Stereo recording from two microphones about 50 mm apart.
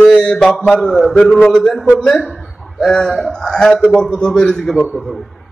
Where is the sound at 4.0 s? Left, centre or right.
Centre.